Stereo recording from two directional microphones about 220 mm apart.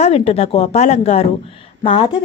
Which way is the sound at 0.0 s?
25° left (ahead or behind).